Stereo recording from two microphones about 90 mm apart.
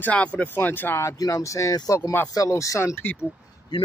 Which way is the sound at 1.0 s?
40° left (ahead or behind).